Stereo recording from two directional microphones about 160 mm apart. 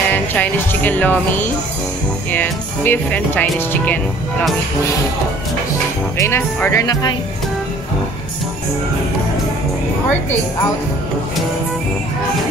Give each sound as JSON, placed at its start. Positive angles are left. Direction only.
{"t": 0.1, "sound": "speech", "side_deg": 10}
{"t": 6.1, "sound": "speech", "side_deg": 15}